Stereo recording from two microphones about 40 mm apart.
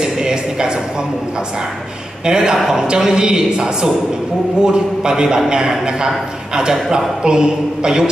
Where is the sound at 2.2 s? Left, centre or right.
Centre.